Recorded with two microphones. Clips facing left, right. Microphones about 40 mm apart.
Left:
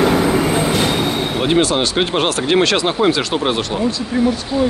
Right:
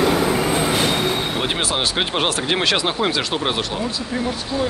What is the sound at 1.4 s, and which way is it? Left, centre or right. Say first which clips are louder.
Speech: left 6 dB; centre.